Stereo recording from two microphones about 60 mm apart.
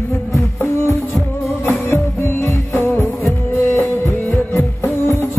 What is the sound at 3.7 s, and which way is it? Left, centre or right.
Music, left.